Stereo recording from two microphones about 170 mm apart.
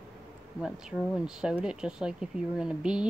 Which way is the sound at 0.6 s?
5° right (ahead or behind).